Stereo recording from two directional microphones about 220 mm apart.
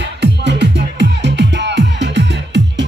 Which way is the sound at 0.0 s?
50° right (ahead or behind).